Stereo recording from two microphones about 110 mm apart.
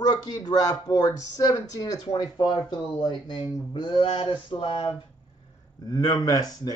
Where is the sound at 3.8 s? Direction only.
50° left (ahead or behind).